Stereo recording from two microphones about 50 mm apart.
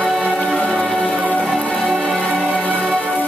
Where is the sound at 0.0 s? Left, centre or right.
Centre.